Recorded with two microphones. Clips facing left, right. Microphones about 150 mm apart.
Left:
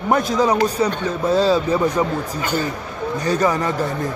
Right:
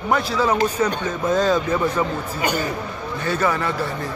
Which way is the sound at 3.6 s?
45° left (ahead or behind).